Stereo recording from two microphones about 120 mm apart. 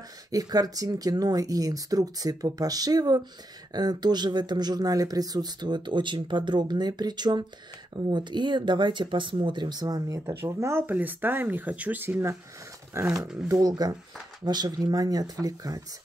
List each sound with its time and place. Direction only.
0.3 s speech: 30° right (ahead or behind)